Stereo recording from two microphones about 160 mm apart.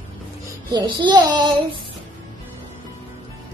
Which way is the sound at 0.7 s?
30° right (ahead or behind).